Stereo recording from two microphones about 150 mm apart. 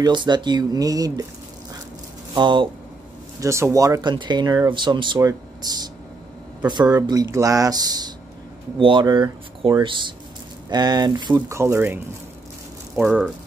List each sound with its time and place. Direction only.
0.0 s speech: 30° right (ahead or behind)
2.3 s speech: 30° right (ahead or behind)
3.3 s speech: 20° right (ahead or behind)
12.9 s speech: centre (ahead or behind)